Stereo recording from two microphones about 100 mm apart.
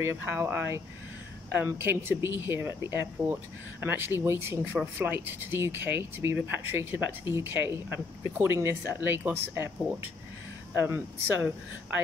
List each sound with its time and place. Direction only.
0.0 s speech: 25° right (ahead or behind)
10.8 s speech: 20° right (ahead or behind)